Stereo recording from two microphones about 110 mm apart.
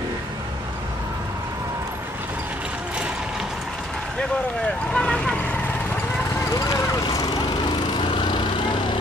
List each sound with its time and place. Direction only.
4.9 s vehicle: 5° left (ahead or behind)
6.5 s speech: 35° left (ahead or behind)
8.0 s lawn mower: 50° left (ahead or behind)